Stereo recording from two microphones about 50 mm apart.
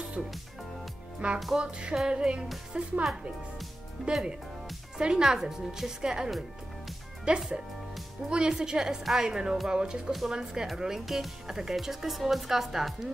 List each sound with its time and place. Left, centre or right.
1.2 s music: right
2.0 s speech: centre